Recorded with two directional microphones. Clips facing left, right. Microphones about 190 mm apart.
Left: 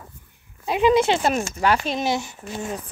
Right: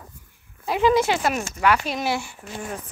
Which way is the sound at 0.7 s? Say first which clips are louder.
Left 2 dB; 20° left (ahead or behind).